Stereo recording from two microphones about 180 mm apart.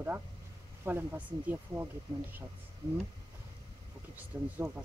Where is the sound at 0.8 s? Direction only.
10° right (ahead or behind).